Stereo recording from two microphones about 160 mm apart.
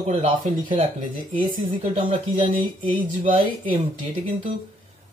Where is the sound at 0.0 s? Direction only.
45° right (ahead or behind).